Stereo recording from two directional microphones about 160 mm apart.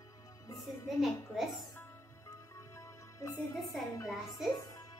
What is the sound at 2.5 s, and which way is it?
Music, 20° left (ahead or behind).